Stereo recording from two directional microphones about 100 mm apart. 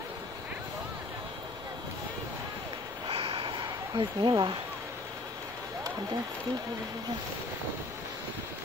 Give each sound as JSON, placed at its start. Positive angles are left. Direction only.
{"t": 3.1, "sound": "snort", "side_deg": -70}
{"t": 3.5, "sound": "speech", "side_deg": -50}